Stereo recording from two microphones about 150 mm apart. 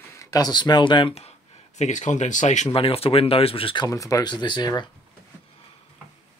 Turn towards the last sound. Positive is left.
turn(degrees=30)  # may be behind; listen again after turning